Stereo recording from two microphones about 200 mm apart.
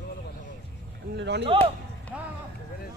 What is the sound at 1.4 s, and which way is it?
Speech, 25° right (ahead or behind).